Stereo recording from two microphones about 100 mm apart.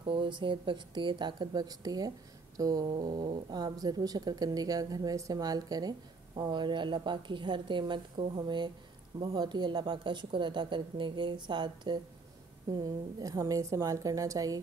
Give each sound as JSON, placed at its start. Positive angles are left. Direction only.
{"t": 0.0, "sound": "a woman's voice", "side_deg": -60}